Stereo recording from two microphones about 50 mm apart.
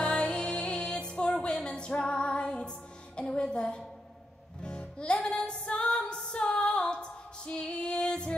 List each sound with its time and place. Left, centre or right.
0.0 s music: centre
3.2 s a sound: centre
4.6 s music: centre